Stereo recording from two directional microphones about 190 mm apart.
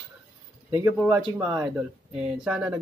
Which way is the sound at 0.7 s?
10° right (ahead or behind).